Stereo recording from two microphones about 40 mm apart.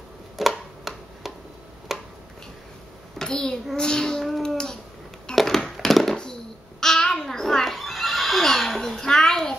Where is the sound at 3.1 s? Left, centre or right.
Centre.